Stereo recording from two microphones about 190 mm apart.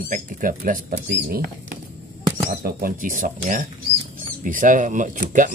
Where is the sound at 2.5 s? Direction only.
50° right (ahead or behind).